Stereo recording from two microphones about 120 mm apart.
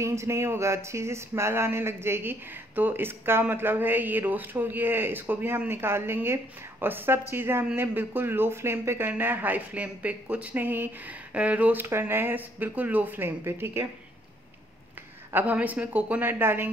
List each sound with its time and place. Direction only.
0.0 s speech: 25° right (ahead or behind)
15.3 s speech: 15° right (ahead or behind)